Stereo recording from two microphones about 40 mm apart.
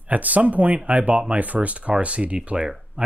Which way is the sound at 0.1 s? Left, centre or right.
Right.